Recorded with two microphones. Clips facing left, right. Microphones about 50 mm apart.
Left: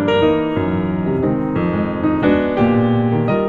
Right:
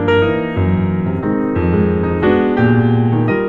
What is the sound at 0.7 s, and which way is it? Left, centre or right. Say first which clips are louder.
Music: right 1 dB; right.